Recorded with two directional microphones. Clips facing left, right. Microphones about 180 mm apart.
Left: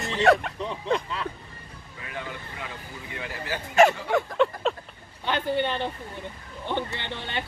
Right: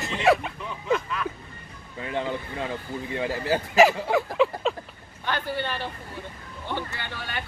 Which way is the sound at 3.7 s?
Centre (ahead or behind).